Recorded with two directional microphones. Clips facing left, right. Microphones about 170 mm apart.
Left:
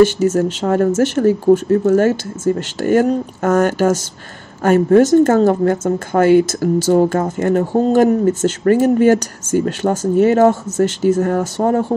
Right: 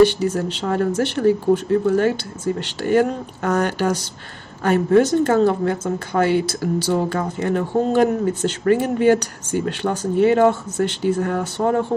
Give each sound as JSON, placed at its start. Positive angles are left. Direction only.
{"t": 0.0, "sound": "a woman's voice", "side_deg": 45}